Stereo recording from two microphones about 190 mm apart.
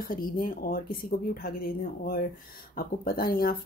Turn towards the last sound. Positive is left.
turn(degrees=50)  # may be behind; listen again after turning